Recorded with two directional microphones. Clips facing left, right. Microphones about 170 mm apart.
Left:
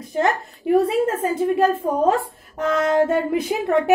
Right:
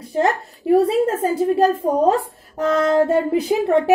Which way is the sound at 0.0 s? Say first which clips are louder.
Right 2 dB; 30° right (ahead or behind).